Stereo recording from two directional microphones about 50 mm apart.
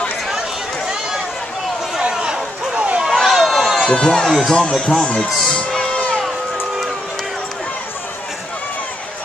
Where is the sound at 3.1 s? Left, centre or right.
Centre; by 6.2 s left.